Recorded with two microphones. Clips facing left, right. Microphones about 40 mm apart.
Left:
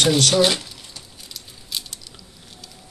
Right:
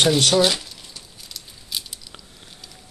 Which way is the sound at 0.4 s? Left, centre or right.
Centre.